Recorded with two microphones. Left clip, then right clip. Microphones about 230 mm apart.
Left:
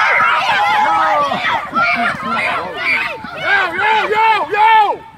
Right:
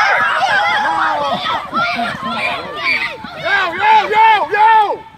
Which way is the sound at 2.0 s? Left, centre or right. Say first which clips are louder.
Left 2 dB; centre.